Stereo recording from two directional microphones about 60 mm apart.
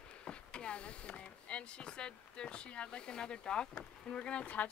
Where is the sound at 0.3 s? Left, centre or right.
Centre.